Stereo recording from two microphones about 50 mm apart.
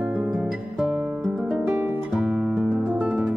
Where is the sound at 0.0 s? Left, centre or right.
Right.